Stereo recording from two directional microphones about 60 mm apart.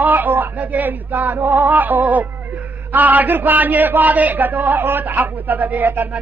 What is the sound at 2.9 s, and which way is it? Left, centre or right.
A man's voice, right.